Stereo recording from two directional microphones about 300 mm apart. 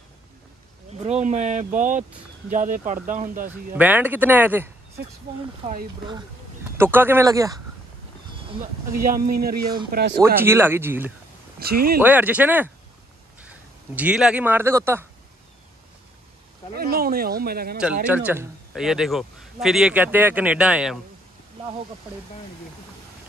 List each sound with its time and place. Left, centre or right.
1.0 s speech: right
3.4 s a man's voice: centre
6.8 s speech: centre
8.9 s speech: right
10.2 s a man's voice: centre
16.7 s speech: right
18.0 s a man's voice: centre